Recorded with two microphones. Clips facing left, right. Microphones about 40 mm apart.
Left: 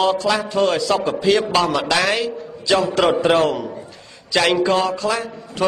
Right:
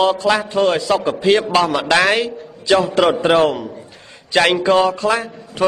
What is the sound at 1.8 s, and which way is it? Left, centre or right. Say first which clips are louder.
Speech: right 4 dB; right.